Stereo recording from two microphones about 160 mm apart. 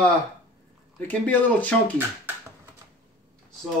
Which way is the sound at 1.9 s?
15° right (ahead or behind).